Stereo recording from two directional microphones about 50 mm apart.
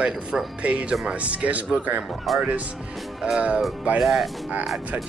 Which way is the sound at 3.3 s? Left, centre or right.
Right.